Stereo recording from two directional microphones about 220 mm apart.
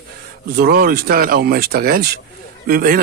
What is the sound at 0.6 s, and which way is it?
A man's voice, 45° right (ahead or behind).